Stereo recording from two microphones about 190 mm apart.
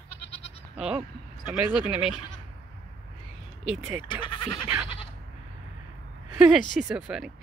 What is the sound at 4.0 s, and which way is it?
Speech, 25° left (ahead or behind).